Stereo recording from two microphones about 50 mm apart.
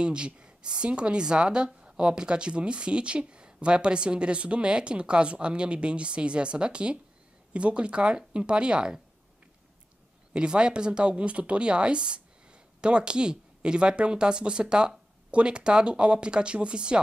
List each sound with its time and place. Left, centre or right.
0.0 s speech: centre
10.3 s speech: centre